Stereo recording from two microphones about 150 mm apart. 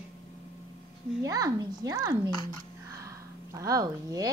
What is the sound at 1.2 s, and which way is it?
Speech, 25° right (ahead or behind).